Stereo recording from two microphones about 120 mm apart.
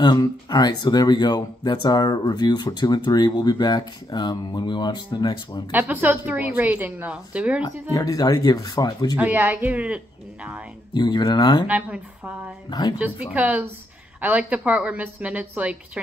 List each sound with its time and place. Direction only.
0.0 s speech: 35° left (ahead or behind)
5.7 s a woman's voice: 15° right (ahead or behind)
7.9 s speech: 30° left (ahead or behind)
9.1 s a woman's voice: 15° right (ahead or behind)
10.9 s speech: 40° left (ahead or behind)
11.6 s a woman's voice: 15° right (ahead or behind)
12.6 s speech: 35° left (ahead or behind)
13.0 s a woman's voice: 10° right (ahead or behind)